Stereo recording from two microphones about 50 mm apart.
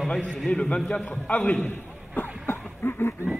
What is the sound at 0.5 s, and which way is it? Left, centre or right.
Speech, left.